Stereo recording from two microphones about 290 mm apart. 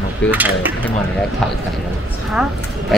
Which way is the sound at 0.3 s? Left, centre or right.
Centre.